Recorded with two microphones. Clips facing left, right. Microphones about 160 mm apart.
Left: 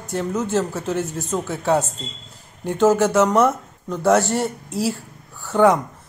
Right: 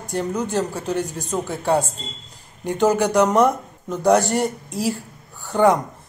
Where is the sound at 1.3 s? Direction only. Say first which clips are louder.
Even; 10° right (ahead or behind).